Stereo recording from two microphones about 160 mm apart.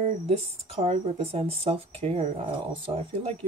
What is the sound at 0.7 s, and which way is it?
Speech, 40° right (ahead or behind).